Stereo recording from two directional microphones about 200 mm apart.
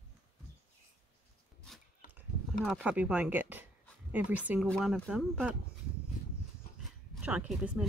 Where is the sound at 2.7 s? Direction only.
5° right (ahead or behind).